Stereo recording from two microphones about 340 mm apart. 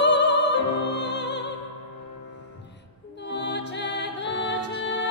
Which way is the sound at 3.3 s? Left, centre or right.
Left.